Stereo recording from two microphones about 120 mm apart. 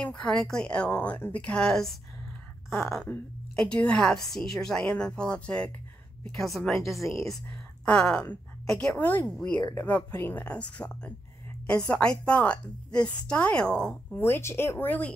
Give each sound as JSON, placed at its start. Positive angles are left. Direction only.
{"t": 0.0, "sound": "a woman's voice", "side_deg": 5}